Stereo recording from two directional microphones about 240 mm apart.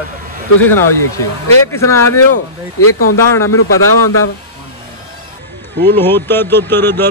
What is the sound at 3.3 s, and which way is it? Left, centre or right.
Speech, centre.